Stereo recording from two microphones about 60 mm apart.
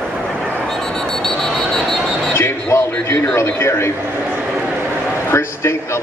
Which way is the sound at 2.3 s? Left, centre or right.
Left.